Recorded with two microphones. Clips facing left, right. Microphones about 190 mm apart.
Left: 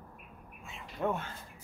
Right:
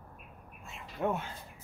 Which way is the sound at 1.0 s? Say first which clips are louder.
Right 1 dB; 15° right (ahead or behind).